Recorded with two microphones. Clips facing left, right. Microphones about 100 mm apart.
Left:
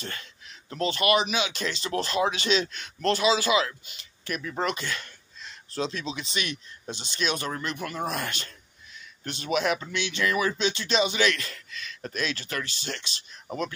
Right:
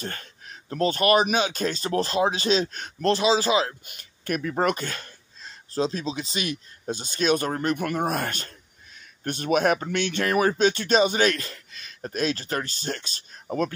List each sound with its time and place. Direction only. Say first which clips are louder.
0.0 s speech: right 3 dB; 45° right (ahead or behind)
3.8 s speech: right 6 dB; 50° right (ahead or behind); by 6.5 s 35° right (ahead or behind)
6.9 s speech: right 7 dB; 45° right (ahead or behind)